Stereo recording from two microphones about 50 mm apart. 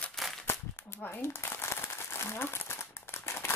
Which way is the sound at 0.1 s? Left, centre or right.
Centre.